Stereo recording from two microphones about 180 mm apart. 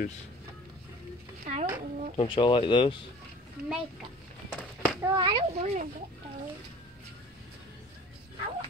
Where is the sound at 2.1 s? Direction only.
30° left (ahead or behind).